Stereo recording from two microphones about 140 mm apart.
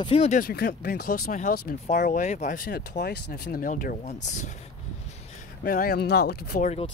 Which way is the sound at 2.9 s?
60° left (ahead or behind).